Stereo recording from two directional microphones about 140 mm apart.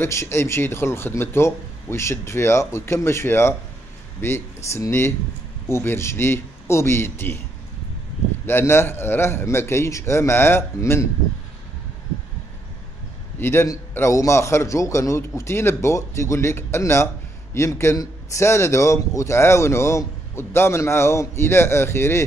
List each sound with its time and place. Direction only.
0.0 s a man's voice: 20° left (ahead or behind)
8.5 s a man's voice: 15° left (ahead or behind)
13.4 s a man's voice: 15° left (ahead or behind)